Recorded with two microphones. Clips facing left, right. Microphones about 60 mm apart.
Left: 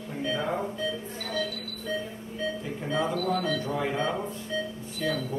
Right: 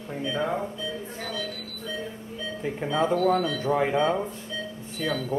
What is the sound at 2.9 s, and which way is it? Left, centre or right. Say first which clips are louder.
Speech: right 5 dB; right.